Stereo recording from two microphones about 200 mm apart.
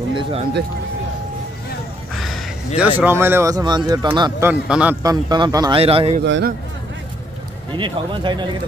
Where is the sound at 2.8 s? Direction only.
10° right (ahead or behind).